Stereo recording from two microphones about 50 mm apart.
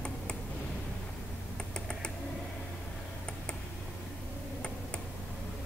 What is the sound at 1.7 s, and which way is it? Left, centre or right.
Typing, centre.